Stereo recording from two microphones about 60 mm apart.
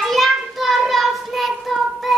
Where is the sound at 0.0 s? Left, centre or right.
Centre.